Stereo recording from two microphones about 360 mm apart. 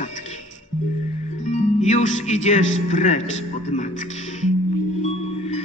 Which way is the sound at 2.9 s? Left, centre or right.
Centre.